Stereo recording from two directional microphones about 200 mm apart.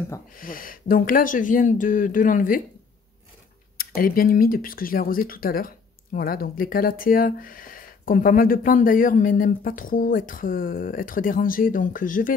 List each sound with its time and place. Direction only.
0.4 s speech: 45° left (ahead or behind)
3.7 s speech: 45° left (ahead or behind)